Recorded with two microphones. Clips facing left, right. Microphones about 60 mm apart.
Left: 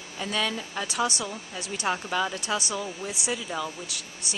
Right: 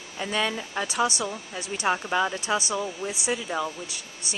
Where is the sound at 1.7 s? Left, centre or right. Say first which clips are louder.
Right 3 dB; centre.